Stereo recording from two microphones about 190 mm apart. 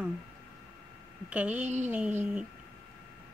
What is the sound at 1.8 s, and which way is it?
Speech, 5° right (ahead or behind).